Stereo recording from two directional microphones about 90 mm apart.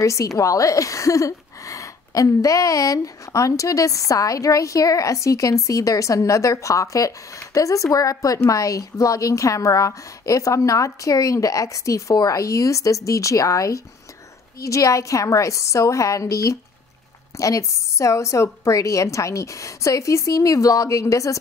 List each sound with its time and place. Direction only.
0.0 s a woman's voice: 35° left (ahead or behind)